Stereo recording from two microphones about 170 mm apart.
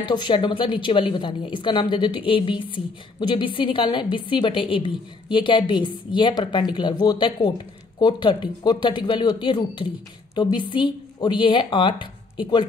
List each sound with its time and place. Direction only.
0.0 s a woman's voice: 25° left (ahead or behind)